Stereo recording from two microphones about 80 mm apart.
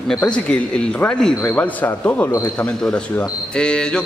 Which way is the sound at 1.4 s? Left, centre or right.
Left.